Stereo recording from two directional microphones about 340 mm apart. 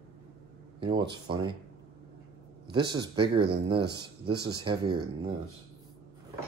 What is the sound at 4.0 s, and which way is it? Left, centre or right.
Speech, centre.